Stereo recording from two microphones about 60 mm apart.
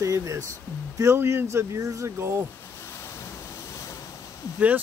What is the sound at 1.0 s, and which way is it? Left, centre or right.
Speech, right.